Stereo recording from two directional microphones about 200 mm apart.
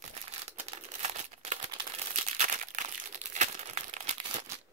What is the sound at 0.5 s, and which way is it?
Crumpling, 35° right (ahead or behind).